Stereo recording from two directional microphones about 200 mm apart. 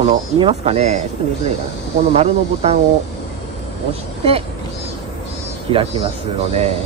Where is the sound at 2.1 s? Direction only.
30° right (ahead or behind).